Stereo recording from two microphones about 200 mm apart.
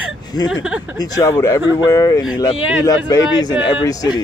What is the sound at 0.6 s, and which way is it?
Speech, 5° right (ahead or behind).